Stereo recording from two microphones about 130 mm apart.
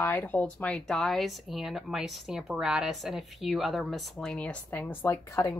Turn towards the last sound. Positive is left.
turn(degrees=25)  # may be behind; listen again after turning